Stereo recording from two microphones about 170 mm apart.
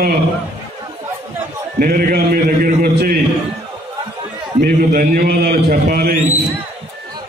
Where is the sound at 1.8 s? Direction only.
60° right (ahead or behind).